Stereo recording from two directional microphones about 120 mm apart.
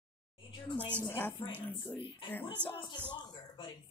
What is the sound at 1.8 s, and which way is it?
Speech, 15° left (ahead or behind).